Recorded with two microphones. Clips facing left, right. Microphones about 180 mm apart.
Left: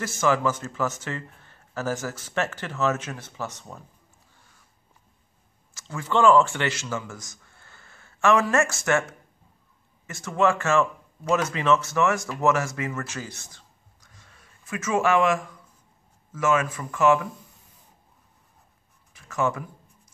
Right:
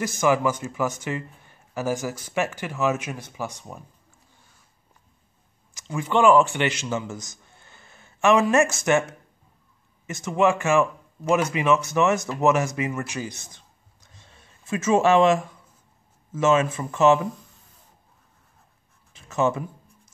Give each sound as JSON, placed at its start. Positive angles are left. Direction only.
{"t": 0.0, "sound": "a man's voice", "side_deg": -15}
{"t": 5.8, "sound": "a man's voice", "side_deg": -15}
{"t": 10.0, "sound": "speech", "side_deg": -20}
{"t": 19.1, "sound": "speech", "side_deg": -25}